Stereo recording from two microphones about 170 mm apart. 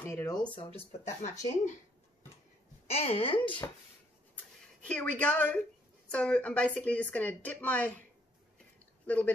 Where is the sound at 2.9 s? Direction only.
35° left (ahead or behind).